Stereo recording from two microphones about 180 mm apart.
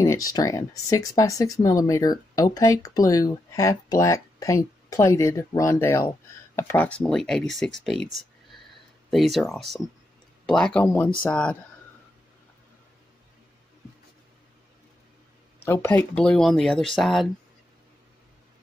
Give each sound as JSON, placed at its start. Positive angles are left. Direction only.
{"t": 0.0, "sound": "speech", "side_deg": 20}
{"t": 15.6, "sound": "speech", "side_deg": 10}